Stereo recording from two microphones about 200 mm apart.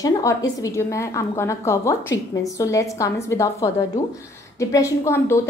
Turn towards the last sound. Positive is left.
turn(degrees=15)  # may be behind; listen again after turning